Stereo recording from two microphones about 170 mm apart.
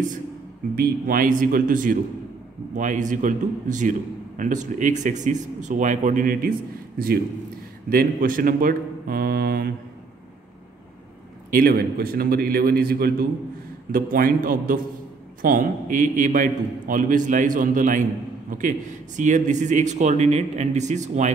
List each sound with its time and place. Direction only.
0.7 s a man's voice: 55° right (ahead or behind)
7.9 s a man's voice: 55° right (ahead or behind)
11.5 s a man's voice: 60° right (ahead or behind)